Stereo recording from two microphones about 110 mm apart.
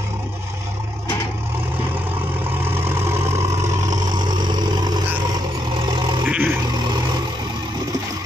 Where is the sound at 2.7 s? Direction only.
25° right (ahead or behind); by 6.2 s 45° right (ahead or behind).